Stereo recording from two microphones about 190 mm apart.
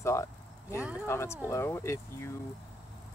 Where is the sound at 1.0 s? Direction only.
15° left (ahead or behind).